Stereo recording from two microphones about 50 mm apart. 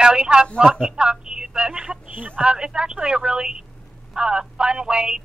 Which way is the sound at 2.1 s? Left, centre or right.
Right.